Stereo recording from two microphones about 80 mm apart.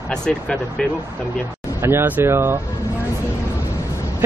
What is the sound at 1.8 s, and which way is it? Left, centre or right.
Speech, right.